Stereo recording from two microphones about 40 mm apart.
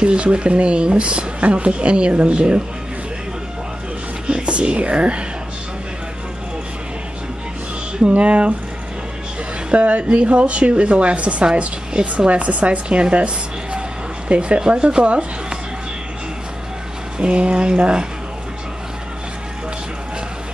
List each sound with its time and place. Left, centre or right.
0.0 s speech: right
4.3 s speech: right
8.1 s speech: right
9.7 s speech: right
17.2 s speech: right